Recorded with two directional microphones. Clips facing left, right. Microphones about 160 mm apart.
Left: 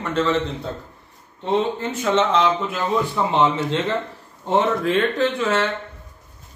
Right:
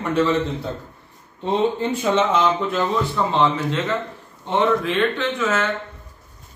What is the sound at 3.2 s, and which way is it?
Speech, 15° left (ahead or behind).